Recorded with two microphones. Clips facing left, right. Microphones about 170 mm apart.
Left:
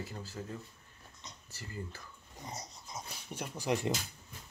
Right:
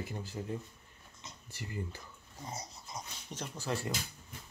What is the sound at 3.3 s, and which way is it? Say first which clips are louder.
Speech: left 3 dB; 15° left (ahead or behind).